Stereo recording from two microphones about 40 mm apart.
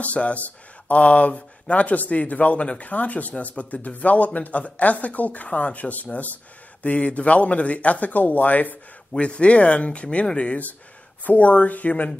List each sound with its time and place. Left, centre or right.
0.0 s speech: left
9.2 s speech: left